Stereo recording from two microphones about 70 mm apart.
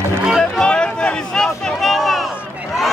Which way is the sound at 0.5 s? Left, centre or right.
Centre.